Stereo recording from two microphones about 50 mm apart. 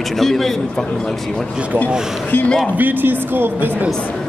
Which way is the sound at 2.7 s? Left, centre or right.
Right.